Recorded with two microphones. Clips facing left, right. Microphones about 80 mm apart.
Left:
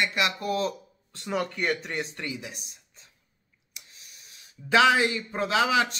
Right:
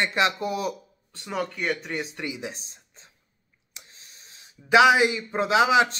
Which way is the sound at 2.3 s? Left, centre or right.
Right.